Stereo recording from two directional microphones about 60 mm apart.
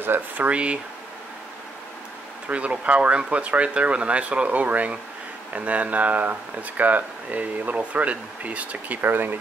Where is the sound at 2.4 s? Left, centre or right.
Right.